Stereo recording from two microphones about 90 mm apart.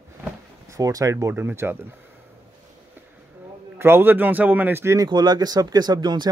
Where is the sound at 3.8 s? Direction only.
25° right (ahead or behind).